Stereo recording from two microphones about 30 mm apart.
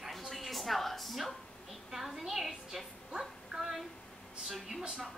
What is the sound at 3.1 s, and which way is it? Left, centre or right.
Child singing, centre.